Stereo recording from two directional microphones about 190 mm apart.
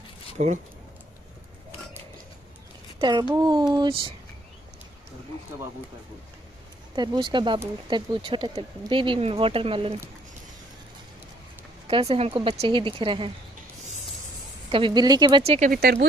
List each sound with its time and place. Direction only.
0.4 s speech: 40° right (ahead or behind)
3.0 s speech: 25° right (ahead or behind)
7.0 s speech: 25° right (ahead or behind)
11.9 s speech: 30° right (ahead or behind)
14.7 s speech: 25° right (ahead or behind)
15.7 s speech: 55° right (ahead or behind)